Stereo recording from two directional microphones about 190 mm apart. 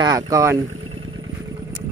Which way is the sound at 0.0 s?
20° right (ahead or behind).